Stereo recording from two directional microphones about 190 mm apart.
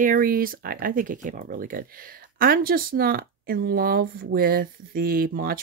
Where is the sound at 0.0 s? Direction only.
45° right (ahead or behind).